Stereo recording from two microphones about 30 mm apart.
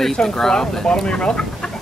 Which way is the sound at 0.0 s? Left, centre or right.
Centre.